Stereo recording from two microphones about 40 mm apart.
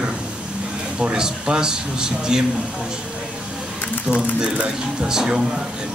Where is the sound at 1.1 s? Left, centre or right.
Right.